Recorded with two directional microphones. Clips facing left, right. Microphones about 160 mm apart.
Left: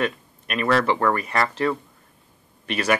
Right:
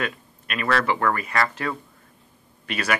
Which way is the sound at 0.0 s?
25° left (ahead or behind).